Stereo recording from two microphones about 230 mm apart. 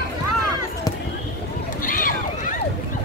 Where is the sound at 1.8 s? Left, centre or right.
Left.